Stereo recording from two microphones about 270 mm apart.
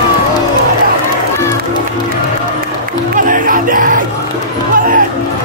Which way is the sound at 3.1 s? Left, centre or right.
Right.